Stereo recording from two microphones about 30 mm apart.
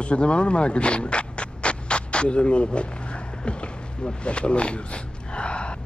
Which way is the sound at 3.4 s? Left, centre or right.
Left.